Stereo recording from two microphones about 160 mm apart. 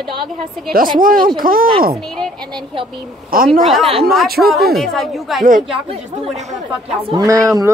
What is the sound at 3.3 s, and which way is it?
Speech, 65° right (ahead or behind).